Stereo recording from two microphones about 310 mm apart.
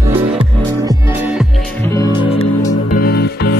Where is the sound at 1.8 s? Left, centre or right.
Centre.